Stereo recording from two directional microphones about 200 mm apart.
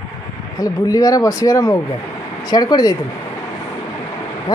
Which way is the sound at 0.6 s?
15° left (ahead or behind).